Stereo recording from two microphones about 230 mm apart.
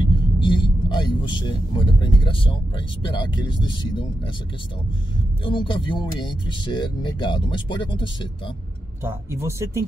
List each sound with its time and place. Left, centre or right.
0.0 s vehicle: left
1.8 s speech: left
5.4 s speech: left
9.0 s speech: centre